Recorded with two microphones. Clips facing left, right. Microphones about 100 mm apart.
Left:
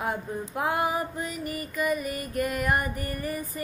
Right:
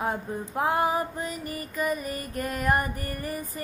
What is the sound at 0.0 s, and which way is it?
Female singing, 35° right (ahead or behind).